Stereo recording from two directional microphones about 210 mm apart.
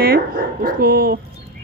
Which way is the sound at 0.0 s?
45° right (ahead or behind).